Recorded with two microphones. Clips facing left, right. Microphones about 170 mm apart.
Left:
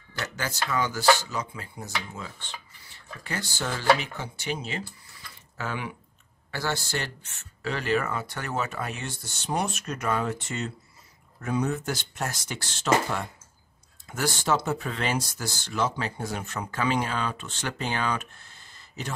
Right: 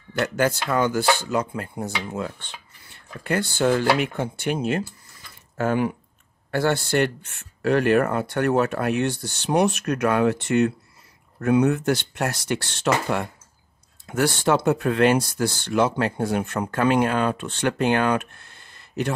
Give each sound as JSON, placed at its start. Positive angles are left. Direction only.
{"t": 0.2, "sound": "speech", "side_deg": -55}